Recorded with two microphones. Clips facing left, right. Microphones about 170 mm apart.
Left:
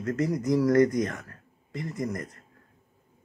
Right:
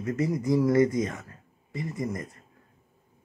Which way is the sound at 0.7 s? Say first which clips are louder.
Left 2 dB; 5° right (ahead or behind).